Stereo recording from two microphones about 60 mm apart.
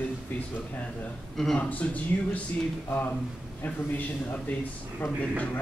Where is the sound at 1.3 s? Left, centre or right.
Centre.